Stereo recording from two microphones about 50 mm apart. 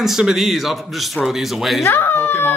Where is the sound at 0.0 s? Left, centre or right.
Centre.